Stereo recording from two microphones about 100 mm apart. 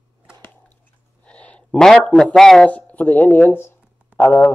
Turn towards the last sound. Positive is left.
turn(degrees=20)  # may be behind; listen again after turning